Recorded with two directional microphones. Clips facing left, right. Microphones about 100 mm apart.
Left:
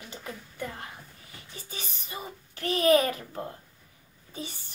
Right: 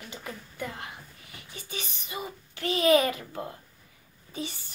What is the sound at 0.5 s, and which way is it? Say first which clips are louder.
A child's voice: right 1 dB; 35° left (ahead or behind).